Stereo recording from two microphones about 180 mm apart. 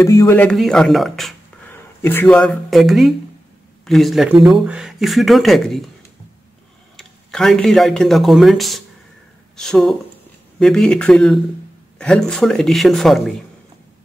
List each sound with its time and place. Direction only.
0.0 s a man's voice: 15° left (ahead or behind)
0.4 s speech: 5° left (ahead or behind)
1.7 s speech: 10° left (ahead or behind)
7.0 s speech: centre (ahead or behind)